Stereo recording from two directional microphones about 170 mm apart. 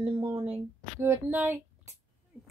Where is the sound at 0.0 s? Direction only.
30° right (ahead or behind).